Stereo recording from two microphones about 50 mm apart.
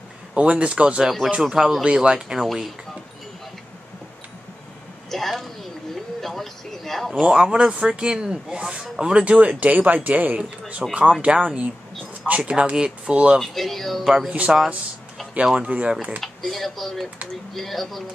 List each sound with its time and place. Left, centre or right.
0.3 s speech: right
2.4 s speech: centre
5.1 s speech: centre
6.2 s a sound: centre
7.2 s speech: centre
10.8 s speech: centre
13.4 s speech: centre
14.3 s speech: right
15.6 s speech: right
16.2 s speech: centre